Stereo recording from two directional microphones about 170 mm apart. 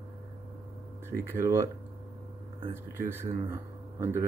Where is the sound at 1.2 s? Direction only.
15° right (ahead or behind).